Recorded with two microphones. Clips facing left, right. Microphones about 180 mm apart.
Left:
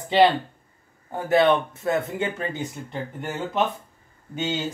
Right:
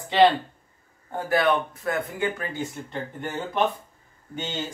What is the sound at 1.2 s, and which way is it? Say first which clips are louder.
Speech: left 4 dB; 25° left (ahead or behind).